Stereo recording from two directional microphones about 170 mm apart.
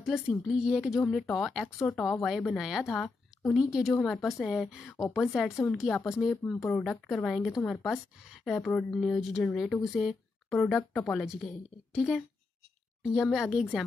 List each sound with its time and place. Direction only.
0.5 s speech: 5° right (ahead or behind)
4.8 s a woman's voice: 15° left (ahead or behind)
5.1 s speech: centre (ahead or behind)